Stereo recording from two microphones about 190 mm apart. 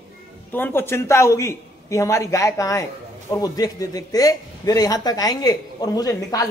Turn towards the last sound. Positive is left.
turn(degrees=20)  # may be behind; listen again after turning